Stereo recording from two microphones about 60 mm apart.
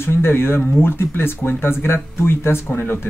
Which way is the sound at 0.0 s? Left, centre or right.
Left.